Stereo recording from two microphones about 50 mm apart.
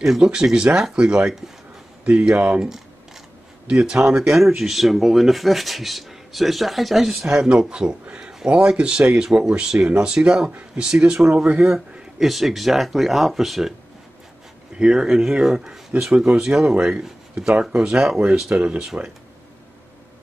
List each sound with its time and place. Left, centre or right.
0.0 s speech: centre
3.6 s speech: centre
7.4 s speech: centre
14.8 s speech: centre